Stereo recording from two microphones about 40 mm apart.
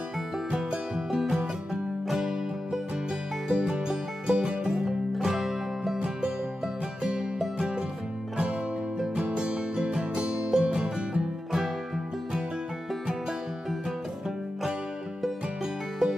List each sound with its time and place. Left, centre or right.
0.5 s music: centre
3.4 s music: centre
4.7 s music: centre
5.9 s music: right
9.2 s music: right
15.6 s music: centre